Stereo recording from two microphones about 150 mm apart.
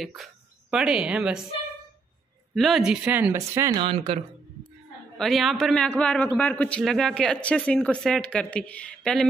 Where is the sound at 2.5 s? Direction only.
Centre (ahead or behind); by 3.7 s 20° right (ahead or behind).